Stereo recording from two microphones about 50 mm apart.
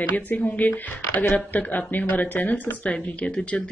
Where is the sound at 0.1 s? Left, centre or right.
Left.